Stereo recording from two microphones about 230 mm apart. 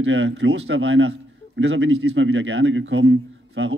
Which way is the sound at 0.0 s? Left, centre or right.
Right.